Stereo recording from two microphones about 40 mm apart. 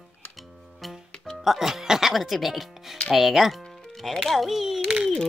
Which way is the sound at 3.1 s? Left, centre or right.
Centre.